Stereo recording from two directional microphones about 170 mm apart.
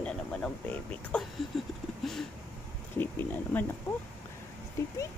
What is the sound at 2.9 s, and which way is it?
Speech, 10° left (ahead or behind).